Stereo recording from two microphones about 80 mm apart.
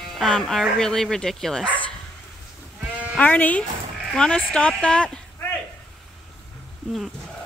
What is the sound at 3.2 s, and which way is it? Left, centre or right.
Speech, left.